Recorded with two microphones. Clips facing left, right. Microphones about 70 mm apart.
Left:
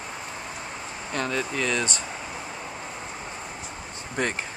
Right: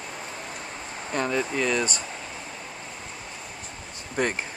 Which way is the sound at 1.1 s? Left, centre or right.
Centre.